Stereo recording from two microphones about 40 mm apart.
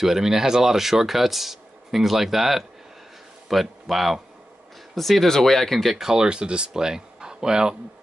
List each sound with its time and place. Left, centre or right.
0.0 s a man's voice: centre
5.9 s speech: centre